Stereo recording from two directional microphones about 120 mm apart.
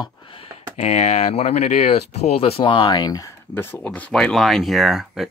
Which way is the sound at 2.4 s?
50° left (ahead or behind).